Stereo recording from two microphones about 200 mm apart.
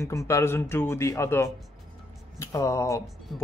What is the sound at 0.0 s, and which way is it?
Speech, 15° left (ahead or behind).